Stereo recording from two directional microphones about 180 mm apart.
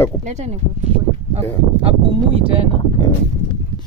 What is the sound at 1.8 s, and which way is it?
Speech, 35° right (ahead or behind).